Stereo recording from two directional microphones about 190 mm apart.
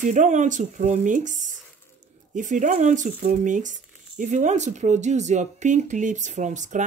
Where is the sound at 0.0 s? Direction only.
40° right (ahead or behind).